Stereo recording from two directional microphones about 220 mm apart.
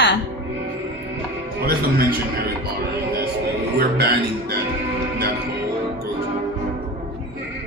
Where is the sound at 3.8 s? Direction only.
45° right (ahead or behind).